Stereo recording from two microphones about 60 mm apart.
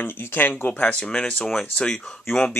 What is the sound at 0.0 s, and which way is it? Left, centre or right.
Speech, left.